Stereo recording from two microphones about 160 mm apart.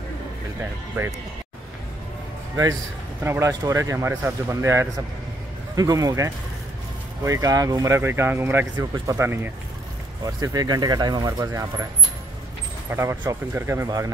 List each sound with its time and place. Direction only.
3.3 s speech: 15° right (ahead or behind)
12.9 s speech: 15° right (ahead or behind)